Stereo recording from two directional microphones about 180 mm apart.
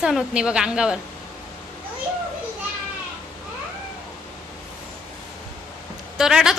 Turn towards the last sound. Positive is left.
turn(degrees=-5)  # may be behind; listen again after turning